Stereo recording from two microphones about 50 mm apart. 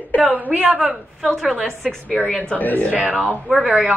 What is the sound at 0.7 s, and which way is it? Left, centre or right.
Speech, centre.